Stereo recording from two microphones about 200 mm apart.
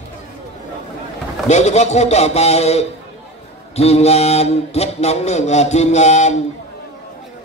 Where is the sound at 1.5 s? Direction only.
35° left (ahead or behind).